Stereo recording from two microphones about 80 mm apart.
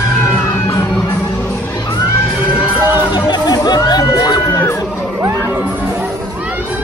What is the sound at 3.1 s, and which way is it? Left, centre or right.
Music, left.